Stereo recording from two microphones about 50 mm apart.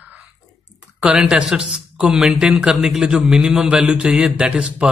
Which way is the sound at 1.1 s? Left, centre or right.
Centre.